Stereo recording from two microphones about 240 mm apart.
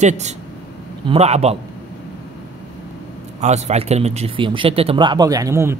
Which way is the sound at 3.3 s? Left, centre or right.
Right.